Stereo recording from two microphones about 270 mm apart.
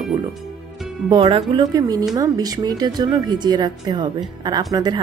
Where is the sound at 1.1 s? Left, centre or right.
Centre.